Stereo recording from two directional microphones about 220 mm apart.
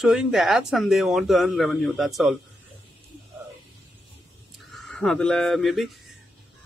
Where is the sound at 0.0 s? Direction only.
5° right (ahead or behind).